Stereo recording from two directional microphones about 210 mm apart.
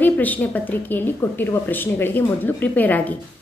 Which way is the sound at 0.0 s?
10° left (ahead or behind).